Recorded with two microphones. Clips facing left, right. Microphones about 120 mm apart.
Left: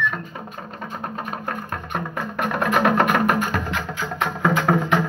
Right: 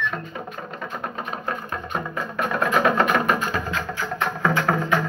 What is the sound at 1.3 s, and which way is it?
Music, 50° left (ahead or behind).